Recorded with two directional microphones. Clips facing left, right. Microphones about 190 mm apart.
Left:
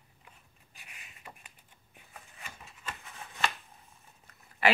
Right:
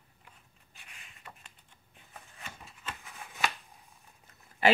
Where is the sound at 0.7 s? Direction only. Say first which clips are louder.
Left 1 dB; 10° left (ahead or behind).